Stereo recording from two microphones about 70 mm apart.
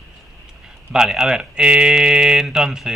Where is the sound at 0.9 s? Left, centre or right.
Centre.